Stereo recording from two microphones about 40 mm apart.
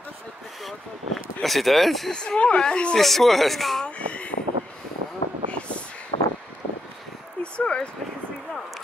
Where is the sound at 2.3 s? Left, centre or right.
Left.